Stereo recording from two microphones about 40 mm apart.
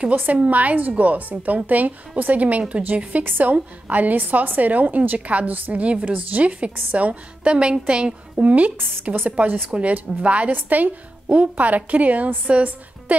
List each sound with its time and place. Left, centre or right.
0.1 s a woman's voice: right
0.4 s a woman's voice: right
8.4 s a woman's voice: right
10.5 s a woman's voice: right